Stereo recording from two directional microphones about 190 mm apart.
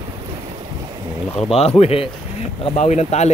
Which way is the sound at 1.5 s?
35° left (ahead or behind).